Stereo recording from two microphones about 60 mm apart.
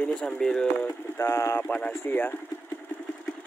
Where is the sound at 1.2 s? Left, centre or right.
Left.